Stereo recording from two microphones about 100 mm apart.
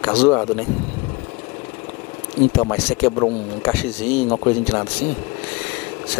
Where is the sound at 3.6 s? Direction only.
10° left (ahead or behind).